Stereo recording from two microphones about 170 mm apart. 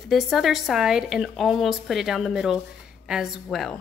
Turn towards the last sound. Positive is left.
turn(degrees=0)  # may be behind; listen again after turning